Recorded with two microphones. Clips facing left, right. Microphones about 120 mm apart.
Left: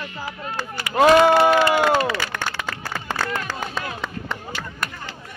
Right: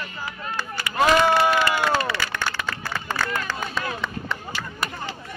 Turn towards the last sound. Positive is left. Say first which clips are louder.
# right 1 dB
turn(degrees=50)  # may be behind; listen again after turning